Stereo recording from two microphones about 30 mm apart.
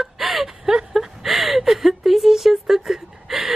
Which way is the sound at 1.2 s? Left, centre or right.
Centre.